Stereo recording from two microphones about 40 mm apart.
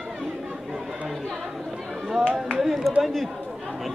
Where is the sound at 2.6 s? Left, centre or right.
Centre.